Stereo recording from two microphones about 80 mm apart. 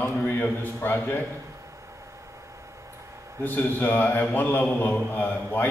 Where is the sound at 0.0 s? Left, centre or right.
Left.